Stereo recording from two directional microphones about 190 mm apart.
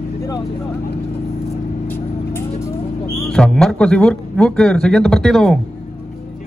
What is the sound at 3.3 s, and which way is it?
A man's voice, 5° left (ahead or behind).